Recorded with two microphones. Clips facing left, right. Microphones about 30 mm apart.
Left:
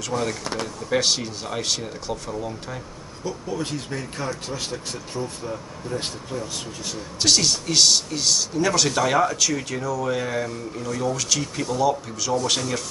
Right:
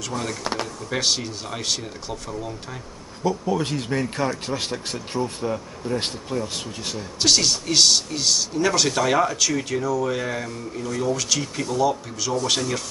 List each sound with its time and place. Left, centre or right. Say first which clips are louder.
0.1 s speech: left 4 dB; centre
0.4 s speech: right 1 dB; centre
0.8 s speech: left 2 dB; centre
3.3 s speech: right 5 dB; centre
7.2 s speech: even; centre